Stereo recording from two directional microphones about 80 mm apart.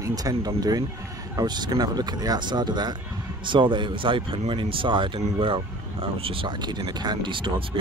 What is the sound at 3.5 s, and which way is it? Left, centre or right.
Speech, right.